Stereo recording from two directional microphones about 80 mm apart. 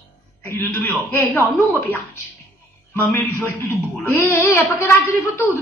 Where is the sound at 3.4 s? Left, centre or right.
Left.